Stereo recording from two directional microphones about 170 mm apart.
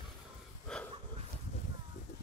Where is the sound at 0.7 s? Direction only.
5° left (ahead or behind).